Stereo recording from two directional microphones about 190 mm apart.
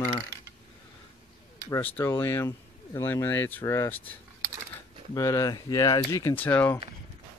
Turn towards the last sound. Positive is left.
turn(degrees=10)  # may be behind; listen again after turning